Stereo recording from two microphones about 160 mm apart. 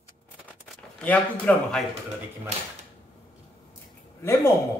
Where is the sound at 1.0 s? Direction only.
5° left (ahead or behind).